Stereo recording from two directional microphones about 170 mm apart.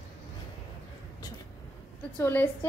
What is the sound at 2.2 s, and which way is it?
Speech, 15° left (ahead or behind).